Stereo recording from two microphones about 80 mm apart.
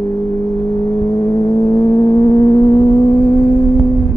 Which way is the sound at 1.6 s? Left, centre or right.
Left.